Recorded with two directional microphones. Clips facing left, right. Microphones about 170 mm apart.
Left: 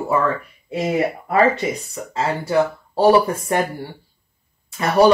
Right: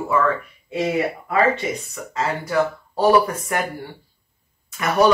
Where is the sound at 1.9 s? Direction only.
30° left (ahead or behind).